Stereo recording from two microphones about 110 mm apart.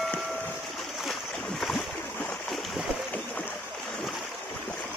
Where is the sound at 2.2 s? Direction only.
5° left (ahead or behind).